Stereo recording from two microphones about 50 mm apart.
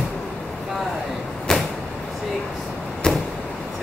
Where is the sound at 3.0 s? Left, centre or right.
Centre.